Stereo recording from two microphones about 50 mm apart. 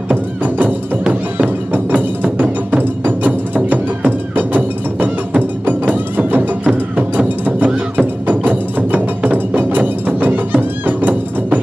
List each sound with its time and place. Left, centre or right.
0.1 s music: right